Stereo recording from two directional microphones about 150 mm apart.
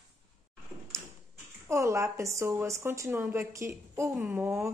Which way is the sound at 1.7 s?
20° right (ahead or behind).